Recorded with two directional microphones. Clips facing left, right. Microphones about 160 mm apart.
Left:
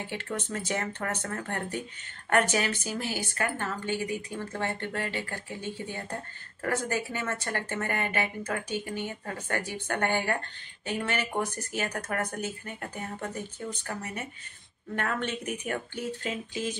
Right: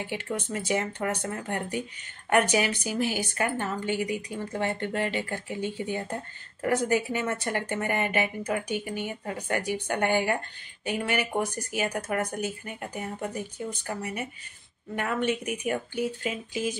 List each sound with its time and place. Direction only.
0.0 s a woman's voice: 10° right (ahead or behind)